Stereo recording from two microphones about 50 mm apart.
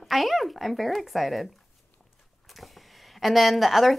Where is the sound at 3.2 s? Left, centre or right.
Centre.